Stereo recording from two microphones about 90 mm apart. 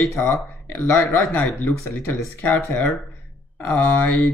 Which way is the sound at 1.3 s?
20° left (ahead or behind).